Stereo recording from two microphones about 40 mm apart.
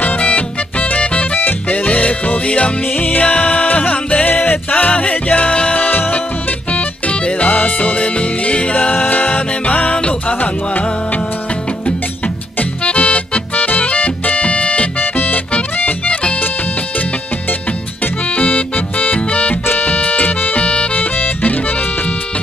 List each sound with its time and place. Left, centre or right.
0.2 s music: left
2.9 s music: left
4.3 s music: left
5.9 s music: left
6.7 s music: left
8.9 s music: left
12.8 s music: left
15.0 s music: left
18.3 s organ: left
19.8 s music: left